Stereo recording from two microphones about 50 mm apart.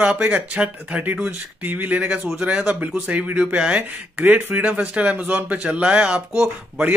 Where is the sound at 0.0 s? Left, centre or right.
Right.